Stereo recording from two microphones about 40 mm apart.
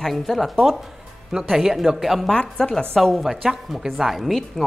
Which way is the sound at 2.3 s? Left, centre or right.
Left.